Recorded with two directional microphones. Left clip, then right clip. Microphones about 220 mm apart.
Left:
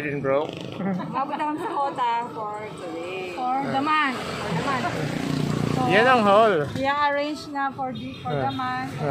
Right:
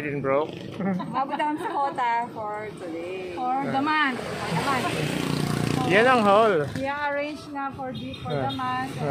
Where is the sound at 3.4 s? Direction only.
5° left (ahead or behind).